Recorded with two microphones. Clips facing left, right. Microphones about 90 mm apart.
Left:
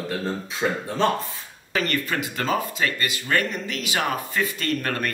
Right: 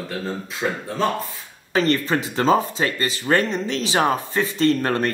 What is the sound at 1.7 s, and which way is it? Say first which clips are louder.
Speech: right 5 dB; 25° right (ahead or behind).